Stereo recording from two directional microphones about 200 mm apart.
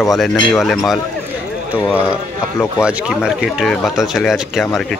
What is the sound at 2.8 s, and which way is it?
Speech, 5° right (ahead or behind).